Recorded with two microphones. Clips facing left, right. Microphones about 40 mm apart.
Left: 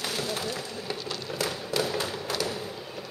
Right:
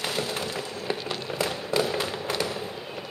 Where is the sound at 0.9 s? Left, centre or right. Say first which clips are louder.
Right 5 dB; right.